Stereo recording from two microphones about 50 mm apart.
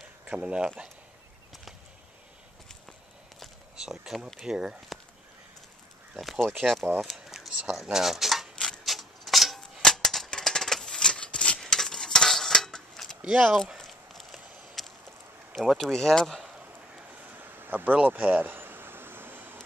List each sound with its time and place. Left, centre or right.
0.3 s speech: right
1.5 s a sound: centre
3.8 s speech: centre
6.1 s speech: centre
8.5 s tick-tock: centre
8.8 s a sound: centre; by 11.6 s left
11.6 s cutlery: centre
13.2 s speech: right
13.7 s walk: centre
15.8 s speech: centre
17.4 s a sound: right